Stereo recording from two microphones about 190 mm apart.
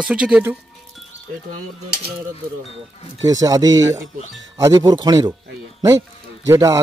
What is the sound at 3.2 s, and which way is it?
Speech, 20° right (ahead or behind).